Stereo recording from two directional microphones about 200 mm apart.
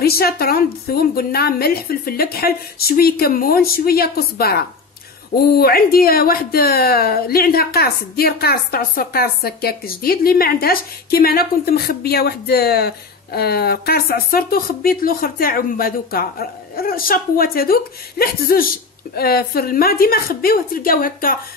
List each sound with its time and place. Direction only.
0.0 s a woman's voice: 50° left (ahead or behind)